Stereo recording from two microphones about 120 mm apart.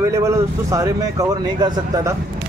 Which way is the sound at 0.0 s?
25° right (ahead or behind).